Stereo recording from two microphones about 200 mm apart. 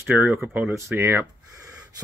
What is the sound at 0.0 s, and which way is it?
Speech, 10° right (ahead or behind).